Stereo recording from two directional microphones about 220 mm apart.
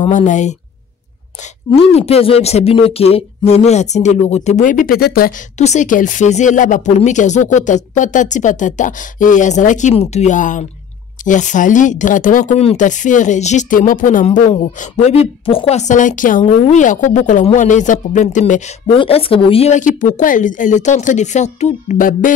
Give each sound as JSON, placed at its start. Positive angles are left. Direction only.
{"t": 0.1, "sound": "speech", "side_deg": 35}
{"t": 1.9, "sound": "speech", "side_deg": 25}
{"t": 5.6, "sound": "speech", "side_deg": 30}